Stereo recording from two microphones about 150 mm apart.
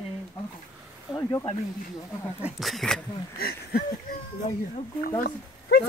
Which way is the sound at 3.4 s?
90° left.